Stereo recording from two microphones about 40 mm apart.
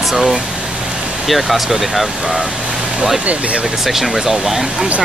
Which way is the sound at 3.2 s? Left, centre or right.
Right.